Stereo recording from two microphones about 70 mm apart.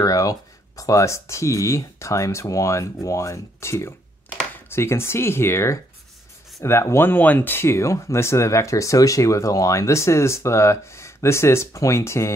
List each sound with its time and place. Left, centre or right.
0.0 s speech: left